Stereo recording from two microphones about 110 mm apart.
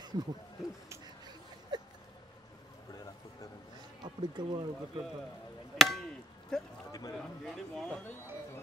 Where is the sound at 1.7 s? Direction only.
40° right (ahead or behind).